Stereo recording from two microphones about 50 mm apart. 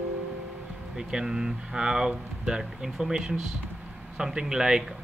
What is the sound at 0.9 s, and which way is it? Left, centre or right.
Speech, centre.